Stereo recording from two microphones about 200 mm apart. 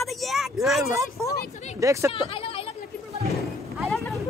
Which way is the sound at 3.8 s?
Centre (ahead or behind).